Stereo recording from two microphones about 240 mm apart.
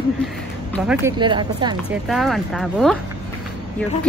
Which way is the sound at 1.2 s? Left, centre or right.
Centre.